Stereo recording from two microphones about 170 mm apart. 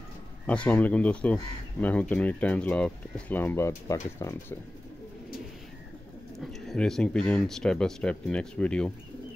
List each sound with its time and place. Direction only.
0.5 s speech: 10° left (ahead or behind)
6.3 s speech: centre (ahead or behind)